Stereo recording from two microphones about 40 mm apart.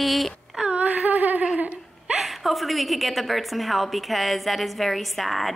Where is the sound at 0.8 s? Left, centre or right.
Right.